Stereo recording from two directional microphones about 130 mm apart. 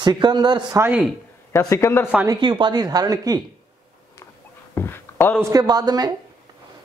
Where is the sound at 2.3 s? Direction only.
40° right (ahead or behind).